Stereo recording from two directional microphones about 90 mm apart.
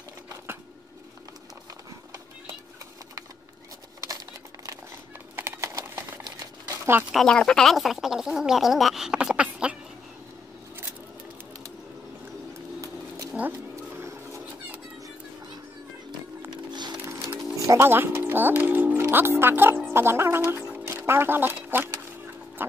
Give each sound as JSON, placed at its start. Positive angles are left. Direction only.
{"t": 5.3, "sound": "typing", "side_deg": -30}
{"t": 6.2, "sound": "crumpling", "side_deg": -50}
{"t": 6.7, "sound": "a sound", "side_deg": -30}
{"t": 7.2, "sound": "speech", "side_deg": 10}
{"t": 13.5, "sound": "a sound", "side_deg": -30}
{"t": 16.4, "sound": "music", "side_deg": -55}
{"t": 17.6, "sound": "speech", "side_deg": -25}
{"t": 22.6, "sound": "pig", "side_deg": -25}